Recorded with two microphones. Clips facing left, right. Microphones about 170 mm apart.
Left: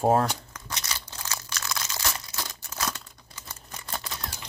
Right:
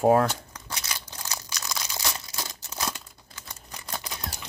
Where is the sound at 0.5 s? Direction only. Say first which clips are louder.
Even; 10° right (ahead or behind).